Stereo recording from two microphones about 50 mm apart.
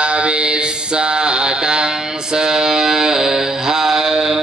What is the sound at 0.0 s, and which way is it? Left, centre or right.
Mantra, right.